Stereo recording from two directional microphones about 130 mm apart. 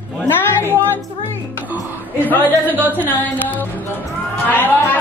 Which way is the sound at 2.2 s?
15° left (ahead or behind).